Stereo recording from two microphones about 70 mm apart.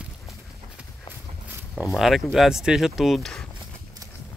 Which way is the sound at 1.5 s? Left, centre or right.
Right.